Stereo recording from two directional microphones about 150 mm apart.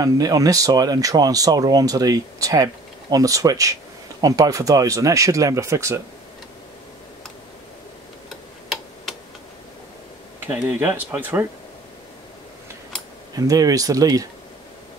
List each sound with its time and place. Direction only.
0.0 s speech: 25° right (ahead or behind)
10.4 s speech: 15° right (ahead or behind)
13.3 s speech: 25° right (ahead or behind)